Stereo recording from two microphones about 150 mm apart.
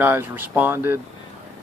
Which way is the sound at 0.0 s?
15° right (ahead or behind).